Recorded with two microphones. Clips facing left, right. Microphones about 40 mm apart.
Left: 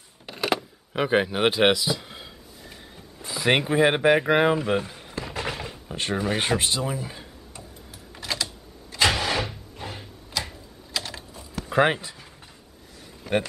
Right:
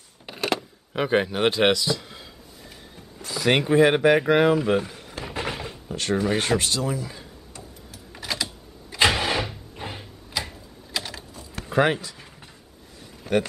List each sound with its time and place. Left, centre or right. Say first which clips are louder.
0.3 s a sound: even; centre
3.2 s speech: right 1 dB; centre
5.2 s a sound: right 1 dB; centre
5.9 s speech: right 3 dB; centre
6.2 s tick-tock: even; centre
8.1 s typing: even; centre
8.9 s vehicle: right 2 dB; centre
9.8 s a sound: right 2 dB; centre
11.7 s speech: even; centre